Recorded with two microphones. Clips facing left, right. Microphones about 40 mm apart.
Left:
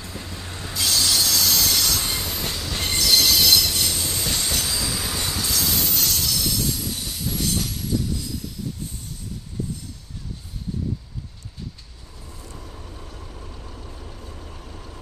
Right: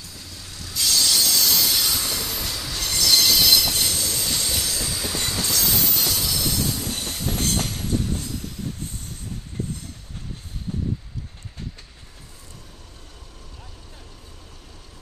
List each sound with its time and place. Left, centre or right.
0.0 s train: left
0.7 s railroad car: centre
2.0 s train: centre
2.7 s train: left
3.0 s train: centre
3.9 s train: left
4.2 s train: centre
4.6 s train: left
4.9 s train: centre
6.8 s train: right
14.0 s vehicle: left